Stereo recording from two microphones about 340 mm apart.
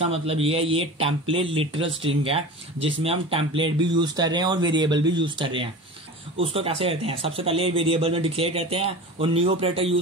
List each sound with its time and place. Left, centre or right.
0.0 s speech: centre